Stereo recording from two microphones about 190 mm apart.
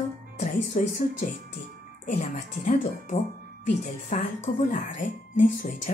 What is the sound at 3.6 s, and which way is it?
Speech, 40° left (ahead or behind).